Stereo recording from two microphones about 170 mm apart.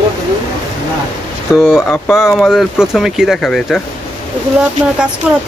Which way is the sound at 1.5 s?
5° right (ahead or behind).